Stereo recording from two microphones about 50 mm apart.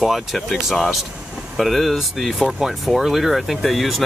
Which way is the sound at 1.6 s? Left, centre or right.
Centre.